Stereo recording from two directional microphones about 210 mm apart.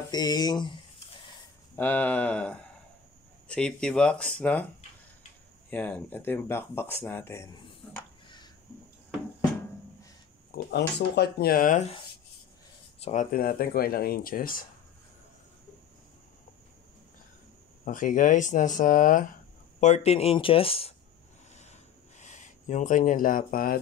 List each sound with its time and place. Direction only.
0.1 s speech: 20° left (ahead or behind)
1.8 s speech: 5° left (ahead or behind)
5.7 s speech: 5° left (ahead or behind)
10.5 s speech: 50° left (ahead or behind)
13.0 s speech: 35° left (ahead or behind)
17.8 s speech: 40° left (ahead or behind)
22.2 s speech: 35° left (ahead or behind)